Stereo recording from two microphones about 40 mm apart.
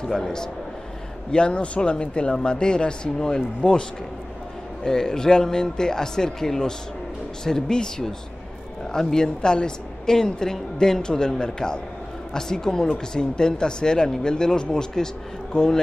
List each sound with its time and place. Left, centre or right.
0.0 s a woman's voice: centre
1.3 s speech: left
4.8 s a woman's voice: centre